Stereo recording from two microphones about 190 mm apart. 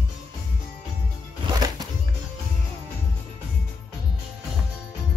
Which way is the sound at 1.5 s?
20° right (ahead or behind).